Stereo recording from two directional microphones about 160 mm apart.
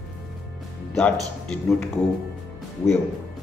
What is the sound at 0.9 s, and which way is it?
Speech, 5° left (ahead or behind).